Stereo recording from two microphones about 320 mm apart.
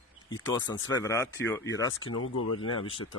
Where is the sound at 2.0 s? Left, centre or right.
Left.